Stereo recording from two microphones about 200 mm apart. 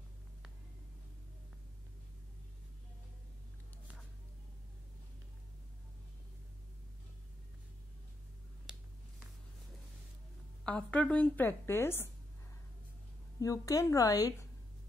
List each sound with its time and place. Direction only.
10.6 s speech: 5° left (ahead or behind)
13.4 s speech: 15° left (ahead or behind)